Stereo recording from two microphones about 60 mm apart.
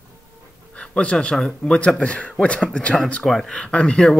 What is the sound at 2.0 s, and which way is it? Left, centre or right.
Speech, left.